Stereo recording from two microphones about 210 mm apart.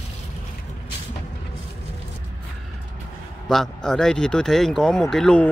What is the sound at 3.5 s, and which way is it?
Speech, centre (ahead or behind).